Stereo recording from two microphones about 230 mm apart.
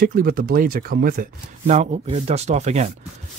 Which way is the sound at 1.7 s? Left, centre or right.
Right.